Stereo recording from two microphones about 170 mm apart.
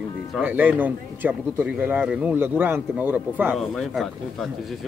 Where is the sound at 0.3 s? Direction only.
10° right (ahead or behind).